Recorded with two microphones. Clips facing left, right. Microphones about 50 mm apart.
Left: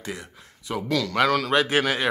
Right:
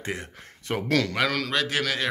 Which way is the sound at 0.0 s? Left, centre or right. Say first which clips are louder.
Right 2 dB; right.